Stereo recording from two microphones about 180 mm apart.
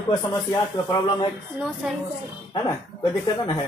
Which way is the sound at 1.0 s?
25° left (ahead or behind).